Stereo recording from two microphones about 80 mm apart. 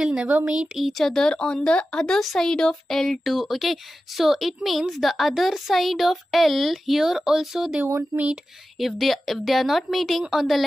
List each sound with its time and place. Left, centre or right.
0.0 s speech: centre
7.8 s speech: right
8.7 s speech: centre